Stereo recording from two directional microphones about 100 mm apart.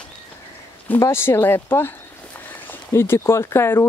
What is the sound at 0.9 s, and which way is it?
Speech, 25° left (ahead or behind).